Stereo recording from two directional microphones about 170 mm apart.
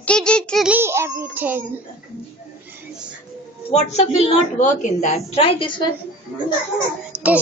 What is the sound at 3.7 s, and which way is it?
A woman's voice, 40° left (ahead or behind).